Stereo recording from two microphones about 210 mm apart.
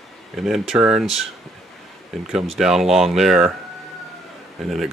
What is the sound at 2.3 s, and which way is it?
Speech, centre (ahead or behind).